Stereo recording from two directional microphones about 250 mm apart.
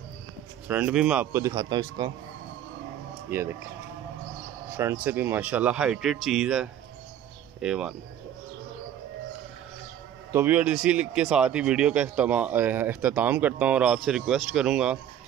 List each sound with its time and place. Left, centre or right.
0.7 s a man's voice: centre
3.3 s speech: centre
4.6 s speech: centre
10.3 s speech: centre